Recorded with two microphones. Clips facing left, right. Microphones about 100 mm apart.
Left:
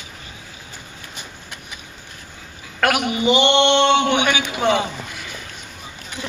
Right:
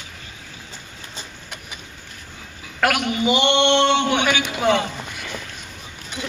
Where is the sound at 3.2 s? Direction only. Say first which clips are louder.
Left 2 dB; centre (ahead or behind).